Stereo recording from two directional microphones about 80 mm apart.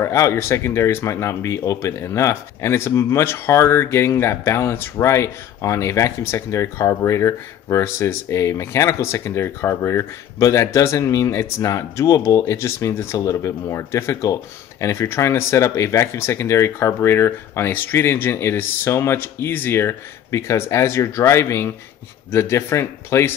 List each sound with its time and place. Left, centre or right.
0.0 s speech: left